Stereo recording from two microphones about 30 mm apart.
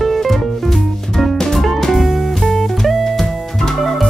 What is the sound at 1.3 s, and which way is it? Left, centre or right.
Music, centre.